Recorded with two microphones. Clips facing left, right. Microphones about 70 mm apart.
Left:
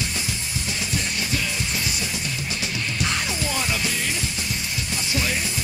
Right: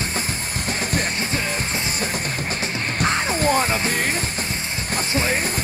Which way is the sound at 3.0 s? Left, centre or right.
Right.